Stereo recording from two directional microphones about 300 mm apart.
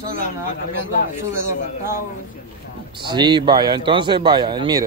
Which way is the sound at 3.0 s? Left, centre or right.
Centre.